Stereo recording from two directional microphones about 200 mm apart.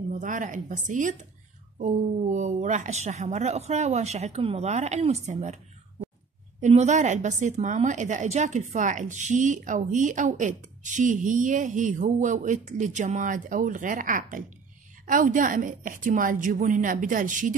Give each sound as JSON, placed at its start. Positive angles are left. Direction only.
{"t": 0.1, "sound": "a woman's voice", "side_deg": -40}
{"t": 6.6, "sound": "a woman's voice", "side_deg": -35}